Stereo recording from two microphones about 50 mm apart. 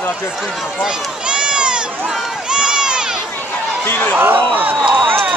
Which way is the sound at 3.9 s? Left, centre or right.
Left.